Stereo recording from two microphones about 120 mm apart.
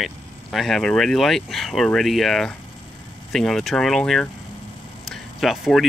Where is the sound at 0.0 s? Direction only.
Centre (ahead or behind).